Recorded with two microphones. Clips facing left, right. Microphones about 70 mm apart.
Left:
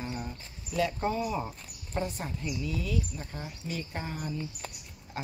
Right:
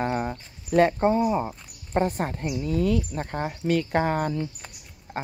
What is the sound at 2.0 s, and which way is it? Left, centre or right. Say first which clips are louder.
Speech: right 9 dB; right.